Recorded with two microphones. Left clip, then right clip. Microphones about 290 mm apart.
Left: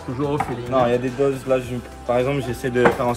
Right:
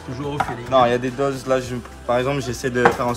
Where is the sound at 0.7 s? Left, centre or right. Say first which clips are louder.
Right 3 dB; centre.